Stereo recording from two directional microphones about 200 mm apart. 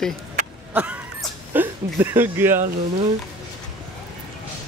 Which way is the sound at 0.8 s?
10° right (ahead or behind).